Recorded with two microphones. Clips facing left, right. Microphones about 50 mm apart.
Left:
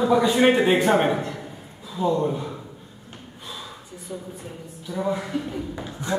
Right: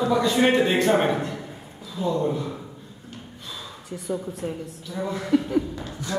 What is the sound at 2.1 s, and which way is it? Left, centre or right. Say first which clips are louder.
Speech: even; centre.